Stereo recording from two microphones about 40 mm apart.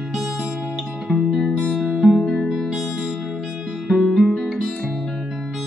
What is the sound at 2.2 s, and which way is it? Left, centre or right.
Music, centre.